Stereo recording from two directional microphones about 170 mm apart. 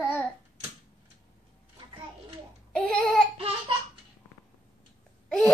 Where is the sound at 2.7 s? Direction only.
5° left (ahead or behind).